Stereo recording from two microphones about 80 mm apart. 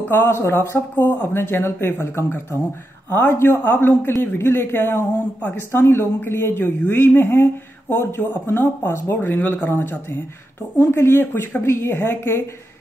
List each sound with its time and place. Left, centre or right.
0.1 s speech: left